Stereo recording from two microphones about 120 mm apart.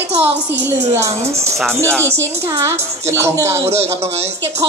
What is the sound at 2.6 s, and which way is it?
Speech, 20° right (ahead or behind).